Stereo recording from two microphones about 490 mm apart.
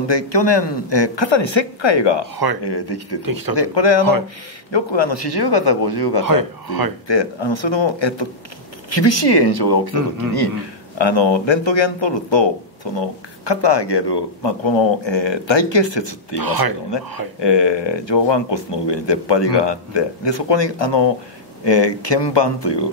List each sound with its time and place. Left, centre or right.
0.1 s speech: left
2.3 s speech: right
2.6 s speech: left
3.3 s speech: right
3.5 s speech: left
6.2 s speech: right
7.1 s speech: left
11.0 s speech: left
16.3 s speech: right
17.4 s speech: left